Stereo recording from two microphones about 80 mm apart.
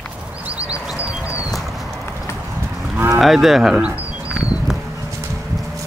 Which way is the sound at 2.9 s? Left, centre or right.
Right.